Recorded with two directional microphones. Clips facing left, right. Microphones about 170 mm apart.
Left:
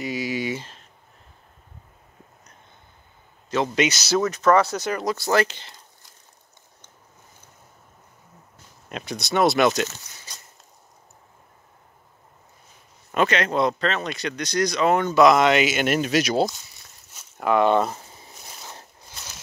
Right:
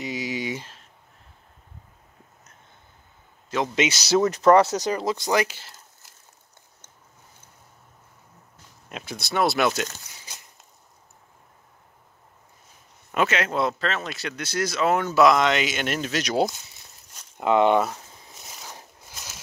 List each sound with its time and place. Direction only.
0.0 s a sound: 20° right (ahead or behind)
3.4 s speech: 10° right (ahead or behind)
4.2 s speech: 30° right (ahead or behind); by 5.8 s 5° right (ahead or behind)
8.8 s speech: 5° right (ahead or behind)
13.1 s speech: 5° right (ahead or behind)
15.3 s speech: 5° left (ahead or behind)
17.4 s speech: 20° right (ahead or behind)